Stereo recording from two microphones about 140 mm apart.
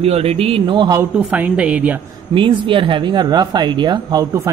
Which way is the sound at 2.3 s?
35° right (ahead or behind).